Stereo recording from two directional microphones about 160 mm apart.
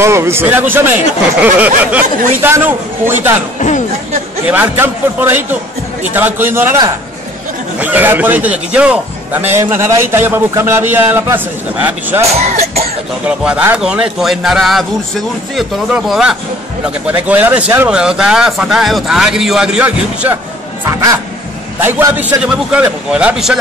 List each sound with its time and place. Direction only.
0.0 s a man's voice: 15° right (ahead or behind)
3.5 s speech: 50° left (ahead or behind)
4.5 s a man's voice: 10° right (ahead or behind)
7.8 s a man's voice: 10° right (ahead or behind)
12.3 s speech: 40° right (ahead or behind)
13.4 s speech: 10° right (ahead or behind)
20.9 s a man's voice: 20° right (ahead or behind); by 23.6 s 5° right (ahead or behind)